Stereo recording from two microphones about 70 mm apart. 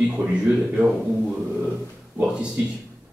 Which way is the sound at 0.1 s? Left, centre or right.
Centre.